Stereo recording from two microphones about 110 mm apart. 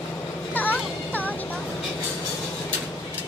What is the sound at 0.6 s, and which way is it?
Vehicle, 15° left (ahead or behind).